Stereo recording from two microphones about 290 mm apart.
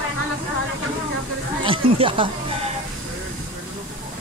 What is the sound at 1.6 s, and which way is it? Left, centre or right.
Speech, centre.